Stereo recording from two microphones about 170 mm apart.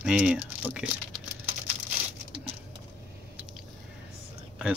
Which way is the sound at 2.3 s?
35° right (ahead or behind).